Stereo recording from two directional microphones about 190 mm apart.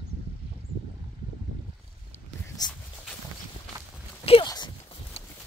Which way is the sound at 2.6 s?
20° left (ahead or behind).